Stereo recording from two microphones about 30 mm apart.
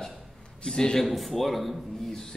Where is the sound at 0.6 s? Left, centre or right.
Left.